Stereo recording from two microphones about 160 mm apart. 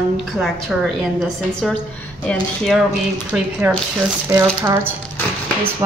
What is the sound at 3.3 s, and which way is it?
Speech, 5° right (ahead or behind).